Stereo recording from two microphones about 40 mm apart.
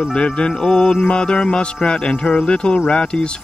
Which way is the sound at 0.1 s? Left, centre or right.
Left.